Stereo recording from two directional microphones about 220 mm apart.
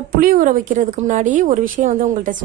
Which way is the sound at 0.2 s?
40° right (ahead or behind).